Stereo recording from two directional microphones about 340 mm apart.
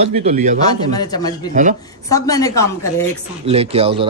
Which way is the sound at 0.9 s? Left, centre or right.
Centre.